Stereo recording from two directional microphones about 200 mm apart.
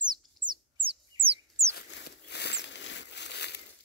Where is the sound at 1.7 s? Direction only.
55° left (ahead or behind).